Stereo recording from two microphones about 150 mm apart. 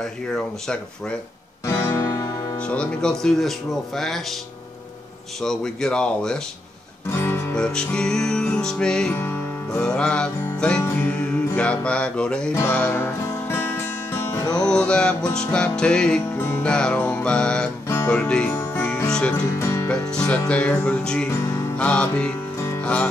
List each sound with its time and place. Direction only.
0.0 s music: 5° left (ahead or behind)
1.7 s music: 20° left (ahead or behind)
2.6 s music: 5° left (ahead or behind)
5.4 s music: 5° left (ahead or behind)
7.1 s guitar: 15° left (ahead or behind)
7.6 s music: 5° left (ahead or behind)
17.8 s music: 15° left (ahead or behind)
21.3 s music: 20° left (ahead or behind)
21.7 s music: 10° left (ahead or behind)